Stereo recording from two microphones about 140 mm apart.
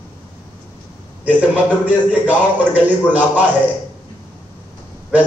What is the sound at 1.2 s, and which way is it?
Speech, 10° right (ahead or behind).